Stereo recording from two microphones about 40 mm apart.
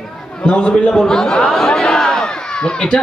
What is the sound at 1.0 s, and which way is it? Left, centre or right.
Chatter, centre.